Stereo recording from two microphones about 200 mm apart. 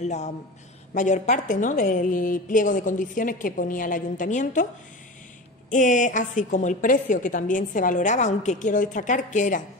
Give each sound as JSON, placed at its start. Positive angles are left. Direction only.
{"t": 0.0, "sound": "a woman's voice", "side_deg": 35}
{"t": 5.7, "sound": "a woman's voice", "side_deg": 40}